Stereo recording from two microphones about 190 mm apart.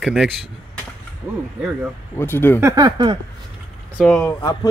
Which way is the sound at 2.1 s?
10° left (ahead or behind).